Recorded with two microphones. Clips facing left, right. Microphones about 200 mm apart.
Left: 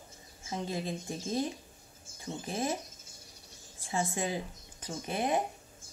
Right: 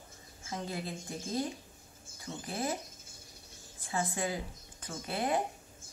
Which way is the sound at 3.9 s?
20° left (ahead or behind).